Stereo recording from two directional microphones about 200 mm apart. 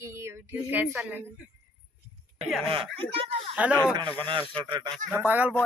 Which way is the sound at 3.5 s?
5° right (ahead or behind).